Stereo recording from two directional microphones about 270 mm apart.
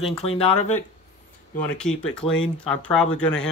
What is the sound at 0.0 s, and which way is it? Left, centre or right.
Speech, left.